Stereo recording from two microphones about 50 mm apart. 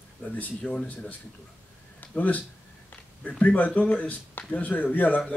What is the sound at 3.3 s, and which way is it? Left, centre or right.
A man's voice, left.